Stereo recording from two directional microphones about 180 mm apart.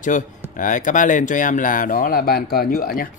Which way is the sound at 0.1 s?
45° left (ahead or behind).